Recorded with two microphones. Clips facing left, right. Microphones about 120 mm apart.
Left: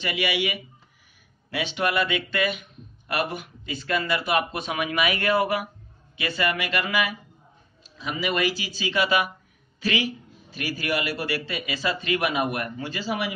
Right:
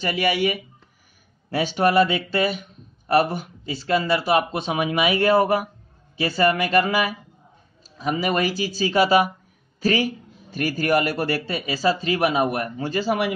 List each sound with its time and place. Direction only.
0.0 s a man's voice: 40° right (ahead or behind)
12.8 s speech: 45° right (ahead or behind)